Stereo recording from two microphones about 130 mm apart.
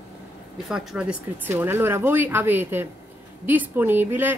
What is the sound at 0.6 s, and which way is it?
Speech, 5° right (ahead or behind).